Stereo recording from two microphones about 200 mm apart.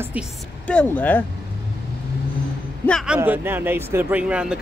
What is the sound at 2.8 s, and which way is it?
Speech, centre (ahead or behind).